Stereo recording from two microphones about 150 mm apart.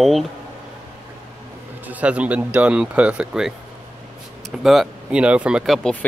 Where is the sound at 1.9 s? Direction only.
10° right (ahead or behind).